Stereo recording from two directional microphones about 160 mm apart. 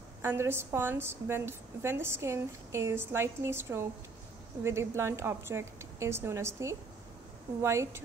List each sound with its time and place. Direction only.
0.2 s a woman's voice: 15° right (ahead or behind)